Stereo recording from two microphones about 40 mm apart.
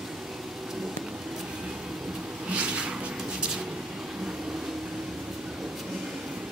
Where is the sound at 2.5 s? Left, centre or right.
Right.